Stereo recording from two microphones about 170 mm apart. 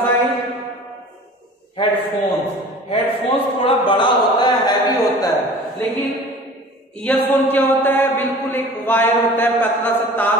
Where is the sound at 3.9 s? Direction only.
25° left (ahead or behind).